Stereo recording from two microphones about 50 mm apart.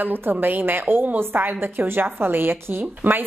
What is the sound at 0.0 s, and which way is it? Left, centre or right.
A woman's voice, right.